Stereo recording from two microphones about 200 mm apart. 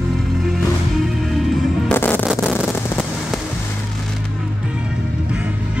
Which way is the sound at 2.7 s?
10° left (ahead or behind).